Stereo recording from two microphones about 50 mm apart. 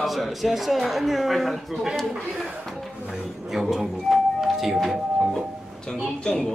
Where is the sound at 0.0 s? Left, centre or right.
Centre.